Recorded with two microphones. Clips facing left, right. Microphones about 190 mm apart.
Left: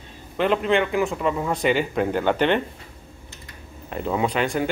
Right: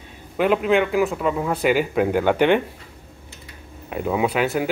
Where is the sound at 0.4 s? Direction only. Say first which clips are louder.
Right 2 dB; 5° right (ahead or behind).